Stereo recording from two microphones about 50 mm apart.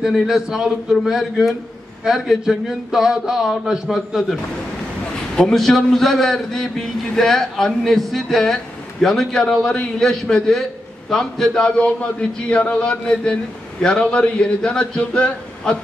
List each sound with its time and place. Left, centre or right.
0.0 s a man's voice: centre
5.5 s a man's voice: centre; by 15.8 s left